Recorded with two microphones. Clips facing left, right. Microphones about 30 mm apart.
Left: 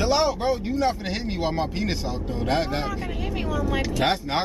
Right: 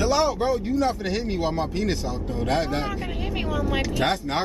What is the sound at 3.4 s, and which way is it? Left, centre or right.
Speech, centre.